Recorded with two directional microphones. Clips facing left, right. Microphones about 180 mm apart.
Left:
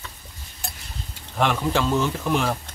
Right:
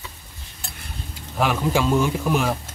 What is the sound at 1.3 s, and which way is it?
A man's voice, 5° right (ahead or behind).